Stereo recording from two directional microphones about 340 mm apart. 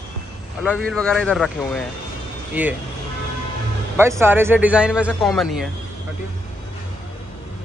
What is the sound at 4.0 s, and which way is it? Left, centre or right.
Speech, centre.